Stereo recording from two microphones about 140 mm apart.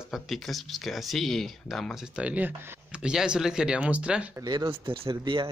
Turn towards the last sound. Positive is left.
turn(degrees=-35)  # may be behind; listen again after turning